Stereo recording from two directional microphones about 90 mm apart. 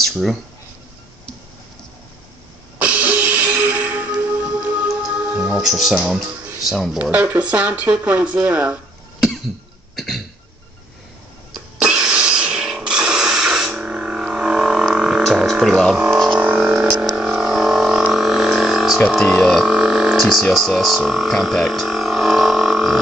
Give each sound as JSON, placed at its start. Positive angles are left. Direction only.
{"t": 0.0, "sound": "a sound", "side_deg": 0}
{"t": 2.8, "sound": "music", "side_deg": -15}
{"t": 5.2, "sound": "speech", "side_deg": -15}
{"t": 7.0, "sound": "speech", "side_deg": -15}
{"t": 9.9, "sound": "cough", "side_deg": 0}
{"t": 11.8, "sound": "a sound", "side_deg": -10}
{"t": 15.6, "sound": "speech", "side_deg": 0}
{"t": 16.5, "sound": "a sound", "side_deg": -5}
{"t": 19.1, "sound": "speech", "side_deg": 5}